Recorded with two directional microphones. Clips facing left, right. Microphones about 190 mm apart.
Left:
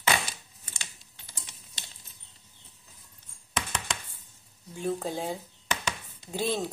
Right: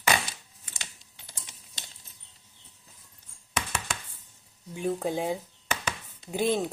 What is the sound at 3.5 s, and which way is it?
Chopping, 10° right (ahead or behind).